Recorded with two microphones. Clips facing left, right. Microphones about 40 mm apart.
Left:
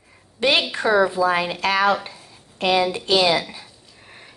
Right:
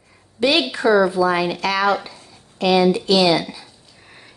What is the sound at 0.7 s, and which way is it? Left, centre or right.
A woman's voice, left.